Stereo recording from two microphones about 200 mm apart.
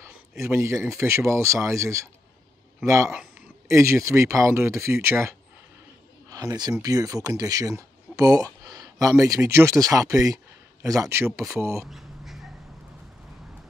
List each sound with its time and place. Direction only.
0.4 s speech: 15° right (ahead or behind)
6.3 s speech: 20° right (ahead or behind)
11.8 s a sound: centre (ahead or behind)